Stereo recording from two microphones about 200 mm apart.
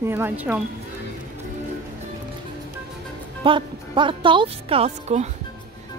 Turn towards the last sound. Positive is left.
turn(degrees=-35)  # may be behind; listen again after turning